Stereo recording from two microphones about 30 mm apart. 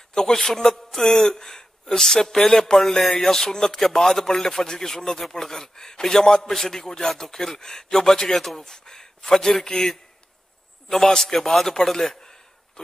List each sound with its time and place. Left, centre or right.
0.1 s a man's voice: centre
8.6 s a man's voice: left
12.2 s a sound: left